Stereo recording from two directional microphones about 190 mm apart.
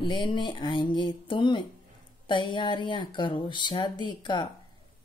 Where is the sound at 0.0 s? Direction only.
25° left (ahead or behind).